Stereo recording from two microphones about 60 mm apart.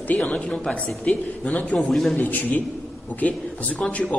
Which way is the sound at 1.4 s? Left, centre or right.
Left.